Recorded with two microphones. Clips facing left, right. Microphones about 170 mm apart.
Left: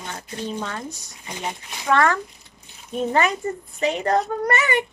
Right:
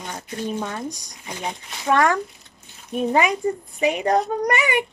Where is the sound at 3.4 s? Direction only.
10° right (ahead or behind).